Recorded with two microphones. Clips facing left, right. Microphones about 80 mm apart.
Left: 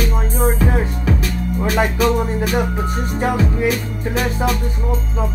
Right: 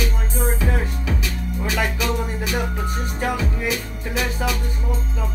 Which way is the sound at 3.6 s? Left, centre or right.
Left.